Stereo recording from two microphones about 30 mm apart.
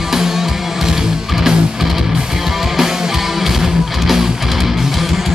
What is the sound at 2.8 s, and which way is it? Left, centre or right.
Music, centre.